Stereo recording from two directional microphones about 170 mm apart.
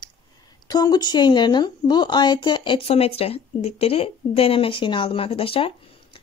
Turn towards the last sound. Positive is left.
turn(degrees=35)  # may be behind; listen again after turning